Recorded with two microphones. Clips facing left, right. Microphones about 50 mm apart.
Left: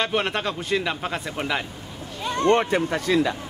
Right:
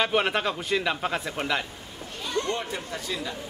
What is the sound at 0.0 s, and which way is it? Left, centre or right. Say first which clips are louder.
Speech: even; centre.